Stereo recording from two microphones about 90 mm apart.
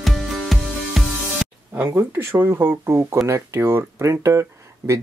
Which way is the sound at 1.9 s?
25° right (ahead or behind).